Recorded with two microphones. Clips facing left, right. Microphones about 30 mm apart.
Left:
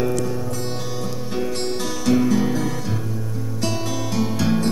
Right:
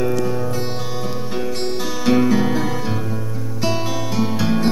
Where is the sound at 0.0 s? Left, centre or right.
Centre.